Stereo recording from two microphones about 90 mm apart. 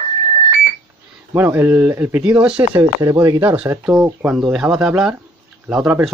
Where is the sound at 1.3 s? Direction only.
20° right (ahead or behind).